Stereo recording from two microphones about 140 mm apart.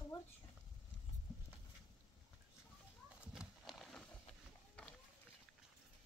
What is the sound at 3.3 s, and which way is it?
Horse, centre (ahead or behind).